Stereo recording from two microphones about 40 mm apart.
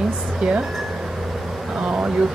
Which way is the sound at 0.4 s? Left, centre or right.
Right.